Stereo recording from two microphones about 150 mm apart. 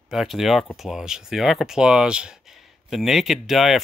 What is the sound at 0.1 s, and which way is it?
Speech, centre (ahead or behind).